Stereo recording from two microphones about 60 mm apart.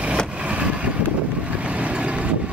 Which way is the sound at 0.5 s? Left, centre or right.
Right.